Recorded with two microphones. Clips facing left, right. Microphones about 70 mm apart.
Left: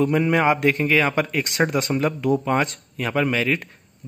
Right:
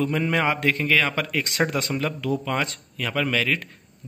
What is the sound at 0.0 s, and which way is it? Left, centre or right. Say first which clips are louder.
Speech: left 4 dB; centre.